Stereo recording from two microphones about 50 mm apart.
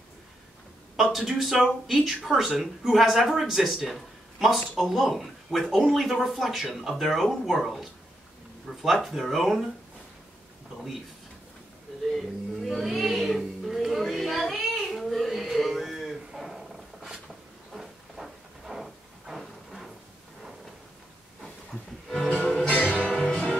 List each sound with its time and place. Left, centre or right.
1.1 s speech: centre
12.1 s a sound: centre
16.3 s dog: centre
17.7 s a sound: centre
22.1 s music: centre
22.7 s music: left